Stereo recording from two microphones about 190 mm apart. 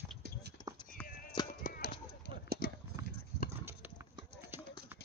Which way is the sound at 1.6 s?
55° left (ahead or behind).